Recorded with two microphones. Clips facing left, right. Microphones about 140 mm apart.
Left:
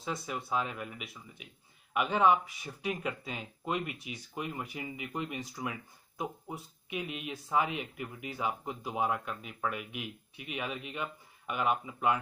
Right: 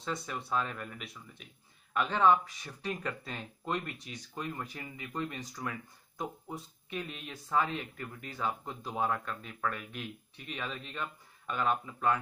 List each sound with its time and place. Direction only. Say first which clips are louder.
0.0 s speech: left 1 dB; 5° left (ahead or behind)